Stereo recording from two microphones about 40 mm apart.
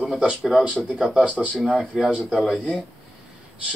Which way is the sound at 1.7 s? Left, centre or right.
Centre.